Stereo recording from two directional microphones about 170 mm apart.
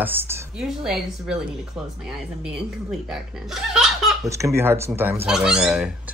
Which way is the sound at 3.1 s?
5° right (ahead or behind).